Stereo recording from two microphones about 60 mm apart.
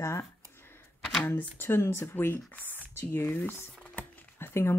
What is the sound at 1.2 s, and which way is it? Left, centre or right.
Speech, left.